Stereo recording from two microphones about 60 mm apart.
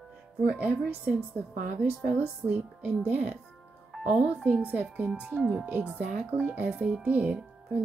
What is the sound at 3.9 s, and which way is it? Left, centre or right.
Music, centre.